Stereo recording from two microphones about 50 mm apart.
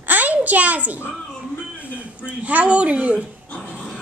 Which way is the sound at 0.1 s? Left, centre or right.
Right.